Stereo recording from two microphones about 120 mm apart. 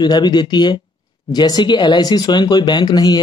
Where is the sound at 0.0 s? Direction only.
35° left (ahead or behind).